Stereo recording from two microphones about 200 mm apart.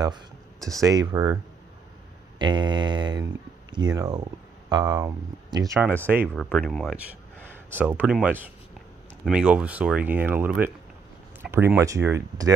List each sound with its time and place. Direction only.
0.7 s speech: 15° right (ahead or behind)
6.2 s speech: 5° left (ahead or behind)
7.7 s speech: 10° right (ahead or behind)